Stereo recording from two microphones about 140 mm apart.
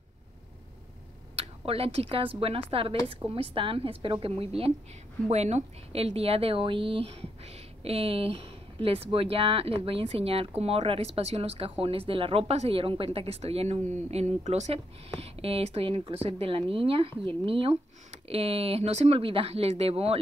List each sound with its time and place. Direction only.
1.3 s a woman's voice: 45° right (ahead or behind)